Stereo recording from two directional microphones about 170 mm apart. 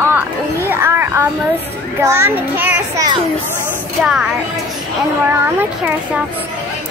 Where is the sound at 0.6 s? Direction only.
15° right (ahead or behind).